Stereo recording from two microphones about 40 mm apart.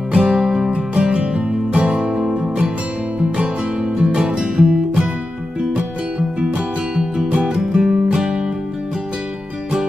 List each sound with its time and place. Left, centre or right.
0.1 s music: centre
0.7 s music: right